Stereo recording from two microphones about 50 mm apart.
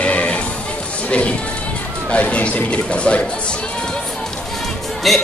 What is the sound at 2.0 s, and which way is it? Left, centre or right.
A man's voice, left.